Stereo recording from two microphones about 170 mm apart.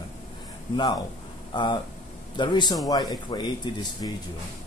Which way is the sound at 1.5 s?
25° left (ahead or behind).